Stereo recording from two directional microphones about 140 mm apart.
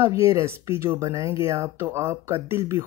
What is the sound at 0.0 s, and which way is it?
Speech, 20° right (ahead or behind).